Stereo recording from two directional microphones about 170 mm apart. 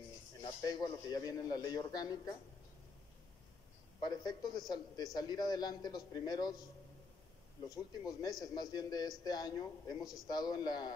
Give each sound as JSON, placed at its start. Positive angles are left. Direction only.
{"t": 0.4, "sound": "a man's voice", "side_deg": 25}
{"t": 4.0, "sound": "a man's voice", "side_deg": 25}
{"t": 7.7, "sound": "a man's voice", "side_deg": 20}